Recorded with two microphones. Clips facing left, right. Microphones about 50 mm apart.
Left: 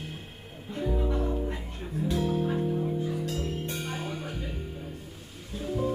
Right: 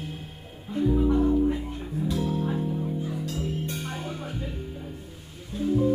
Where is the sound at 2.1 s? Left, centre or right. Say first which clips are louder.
Left 1 dB; centre.